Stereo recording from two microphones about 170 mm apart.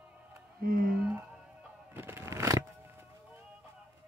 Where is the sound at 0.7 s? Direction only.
55° right (ahead or behind).